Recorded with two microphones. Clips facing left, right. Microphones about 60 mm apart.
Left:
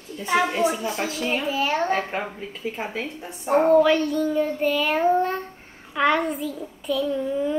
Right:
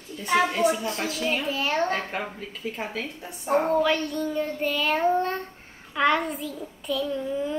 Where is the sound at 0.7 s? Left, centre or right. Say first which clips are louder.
Left 1 dB; centre.